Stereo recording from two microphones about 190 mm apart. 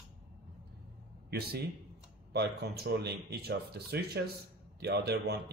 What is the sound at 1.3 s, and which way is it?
Speech, 55° right (ahead or behind).